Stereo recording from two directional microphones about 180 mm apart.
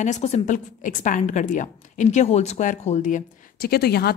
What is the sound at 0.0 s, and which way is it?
A woman's voice, 40° left (ahead or behind).